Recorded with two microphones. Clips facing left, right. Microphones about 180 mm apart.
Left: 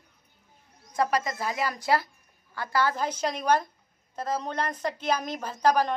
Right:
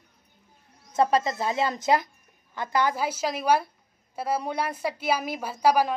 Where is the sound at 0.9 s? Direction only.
25° right (ahead or behind).